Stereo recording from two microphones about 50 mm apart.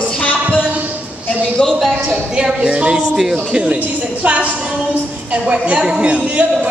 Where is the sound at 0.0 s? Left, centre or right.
Left.